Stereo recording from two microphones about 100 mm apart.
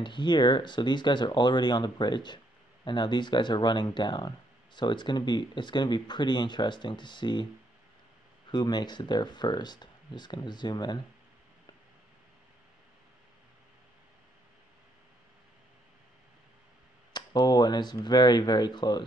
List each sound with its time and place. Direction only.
0.0 s speech: 50° left (ahead or behind)
8.5 s speech: 45° left (ahead or behind)
17.1 s speech: 45° left (ahead or behind)